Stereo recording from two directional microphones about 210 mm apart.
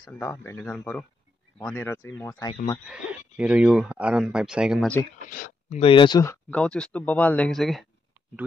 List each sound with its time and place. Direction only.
0.1 s speech: 10° left (ahead or behind)
2.9 s speech: 5° right (ahead or behind)
5.3 s speech: 40° left (ahead or behind)
5.8 s speech: 25° left (ahead or behind)
6.5 s speech: 5° left (ahead or behind)